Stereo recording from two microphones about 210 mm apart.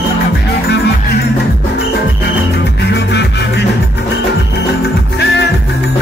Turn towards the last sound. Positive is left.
turn(degrees=55)  # may be behind; listen again after turning